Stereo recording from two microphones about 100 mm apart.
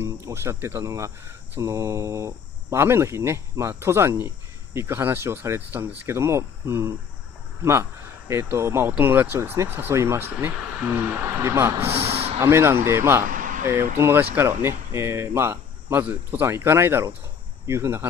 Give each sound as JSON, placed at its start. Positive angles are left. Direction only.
{"t": 0.0, "sound": "speech", "side_deg": -25}
{"t": 11.9, "sound": "a sound", "side_deg": -90}
{"t": 12.4, "sound": "speech", "side_deg": -25}